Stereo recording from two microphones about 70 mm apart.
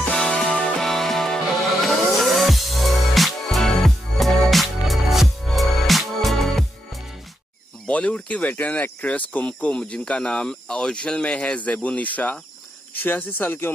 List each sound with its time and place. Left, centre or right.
0.1 s music: centre
7.9 s speech: centre